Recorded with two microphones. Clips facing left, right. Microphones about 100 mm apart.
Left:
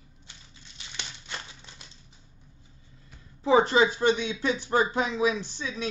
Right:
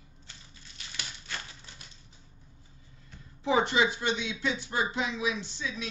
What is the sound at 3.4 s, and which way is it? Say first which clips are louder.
Speech: left 5 dB; 35° left (ahead or behind).